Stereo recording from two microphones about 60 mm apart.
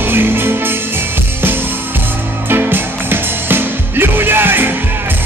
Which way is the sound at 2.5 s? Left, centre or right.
Right.